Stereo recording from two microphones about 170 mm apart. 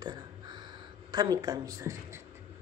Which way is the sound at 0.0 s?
25° right (ahead or behind).